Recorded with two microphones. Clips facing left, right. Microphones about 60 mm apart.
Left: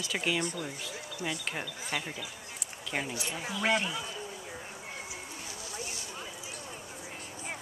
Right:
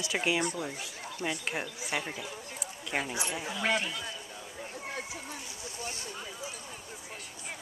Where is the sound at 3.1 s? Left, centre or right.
Right.